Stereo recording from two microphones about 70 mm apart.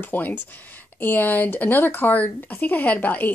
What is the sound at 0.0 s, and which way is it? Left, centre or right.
A woman's voice, left.